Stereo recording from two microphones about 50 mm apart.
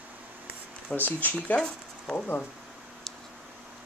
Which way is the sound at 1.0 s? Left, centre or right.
Left.